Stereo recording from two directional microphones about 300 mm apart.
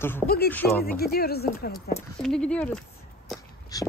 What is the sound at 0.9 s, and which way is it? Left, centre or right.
Speech, left.